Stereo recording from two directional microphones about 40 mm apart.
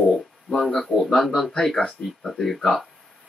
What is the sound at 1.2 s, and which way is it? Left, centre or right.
Speech, centre.